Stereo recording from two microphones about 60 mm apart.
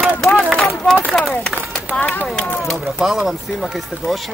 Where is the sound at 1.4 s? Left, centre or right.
Centre.